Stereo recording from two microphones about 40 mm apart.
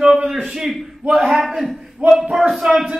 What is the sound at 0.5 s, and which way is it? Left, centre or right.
A man's voice, centre.